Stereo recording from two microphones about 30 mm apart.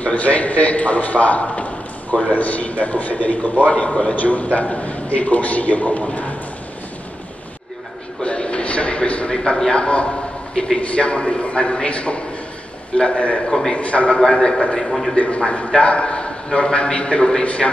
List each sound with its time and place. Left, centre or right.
0.0 s a man's voice: left
2.3 s a man's voice: left
3.6 s a man's voice: left
4.1 s a man's voice: left
8.2 s a sound: left
10.5 s a sound: left
10.8 s a man's voice: left
14.2 s a man's voice: left
14.8 s a man's voice: centre
15.1 s a man's voice: left